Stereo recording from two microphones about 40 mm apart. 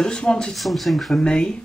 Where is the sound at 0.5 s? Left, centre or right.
Centre.